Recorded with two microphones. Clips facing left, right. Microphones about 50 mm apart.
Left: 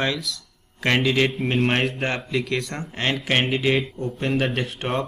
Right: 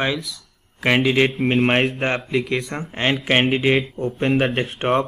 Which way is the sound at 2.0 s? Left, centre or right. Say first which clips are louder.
Right 3 dB; centre.